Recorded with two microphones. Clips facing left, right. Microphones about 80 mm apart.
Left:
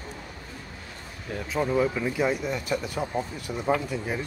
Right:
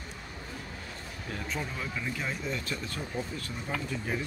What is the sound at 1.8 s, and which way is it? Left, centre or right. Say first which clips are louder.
Speech: left 10 dB; centre.